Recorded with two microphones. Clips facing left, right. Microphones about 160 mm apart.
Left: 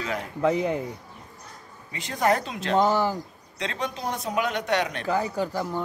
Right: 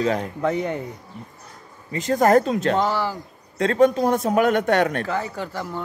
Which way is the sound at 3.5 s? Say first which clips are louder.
Right 14 dB; 50° right (ahead or behind).